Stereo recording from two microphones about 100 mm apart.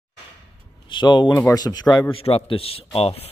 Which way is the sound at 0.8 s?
50° left (ahead or behind).